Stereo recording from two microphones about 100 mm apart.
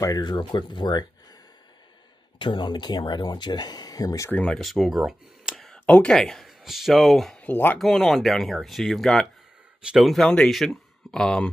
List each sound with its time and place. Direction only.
0.0 s speech: 40° left (ahead or behind)
2.3 s speech: 50° left (ahead or behind); by 4.3 s 35° left (ahead or behind)
4.3 s speech: 10° left (ahead or behind); by 5.6 s 5° right (ahead or behind)
5.6 s speech: 10° left (ahead or behind)
7.4 s speech: 15° left (ahead or behind)
7.8 s speech: centre (ahead or behind)